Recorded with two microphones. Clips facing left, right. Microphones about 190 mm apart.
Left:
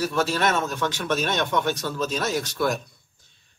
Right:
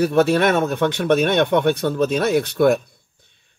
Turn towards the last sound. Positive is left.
turn(degrees=-60)  # may be behind; listen again after turning